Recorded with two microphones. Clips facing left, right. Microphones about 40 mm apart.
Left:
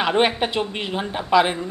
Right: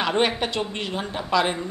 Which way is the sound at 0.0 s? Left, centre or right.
Centre.